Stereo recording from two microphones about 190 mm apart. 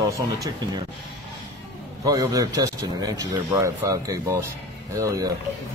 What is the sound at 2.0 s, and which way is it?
Speech, 20° right (ahead or behind).